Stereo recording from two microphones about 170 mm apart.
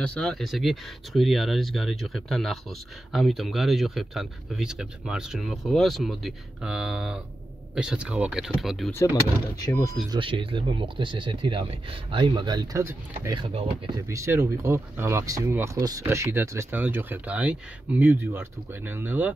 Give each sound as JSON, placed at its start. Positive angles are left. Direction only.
{"t": 0.0, "sound": "speech", "side_deg": 5}
{"t": 8.9, "sound": "speech", "side_deg": 15}
{"t": 10.1, "sound": "speech", "side_deg": -30}
{"t": 13.4, "sound": "speech", "side_deg": -30}
{"t": 14.0, "sound": "speech", "side_deg": -15}